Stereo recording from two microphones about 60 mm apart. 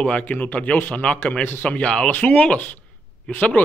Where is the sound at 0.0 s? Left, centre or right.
Left.